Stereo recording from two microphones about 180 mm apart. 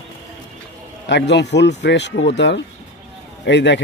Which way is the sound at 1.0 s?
75° left (ahead or behind).